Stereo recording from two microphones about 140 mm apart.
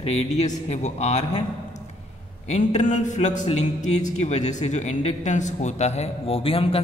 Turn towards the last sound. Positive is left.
turn(degrees=40)  # may be behind; listen again after turning